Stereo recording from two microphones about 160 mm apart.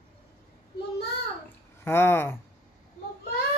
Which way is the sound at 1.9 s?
15° left (ahead or behind).